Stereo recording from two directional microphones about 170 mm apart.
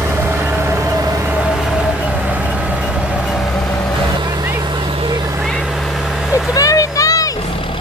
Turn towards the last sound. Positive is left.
turn(degrees=20)  # may be behind; listen again after turning